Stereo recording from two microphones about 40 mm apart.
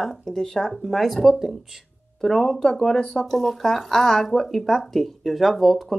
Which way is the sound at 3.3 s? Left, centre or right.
Centre.